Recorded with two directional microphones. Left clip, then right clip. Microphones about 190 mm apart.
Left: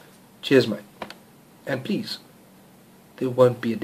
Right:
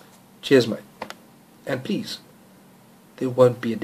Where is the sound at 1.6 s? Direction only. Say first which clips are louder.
Right 1 dB; 5° right (ahead or behind).